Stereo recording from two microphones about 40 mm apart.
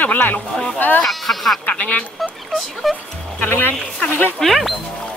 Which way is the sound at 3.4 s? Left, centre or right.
Left.